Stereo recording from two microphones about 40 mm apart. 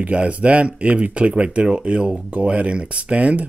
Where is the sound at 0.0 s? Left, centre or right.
Right.